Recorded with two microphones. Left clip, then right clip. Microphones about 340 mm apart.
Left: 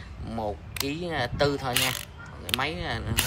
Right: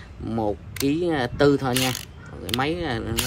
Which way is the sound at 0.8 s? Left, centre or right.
Centre.